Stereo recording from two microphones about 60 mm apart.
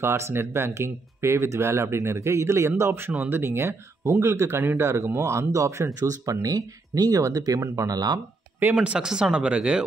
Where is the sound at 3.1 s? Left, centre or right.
Right.